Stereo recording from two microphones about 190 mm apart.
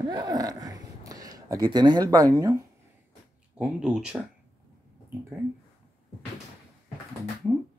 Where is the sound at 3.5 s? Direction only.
5° right (ahead or behind).